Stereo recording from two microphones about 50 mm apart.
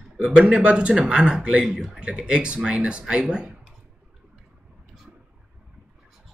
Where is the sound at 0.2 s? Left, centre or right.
Right.